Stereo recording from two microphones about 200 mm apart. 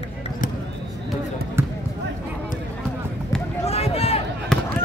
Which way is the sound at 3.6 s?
30° left (ahead or behind).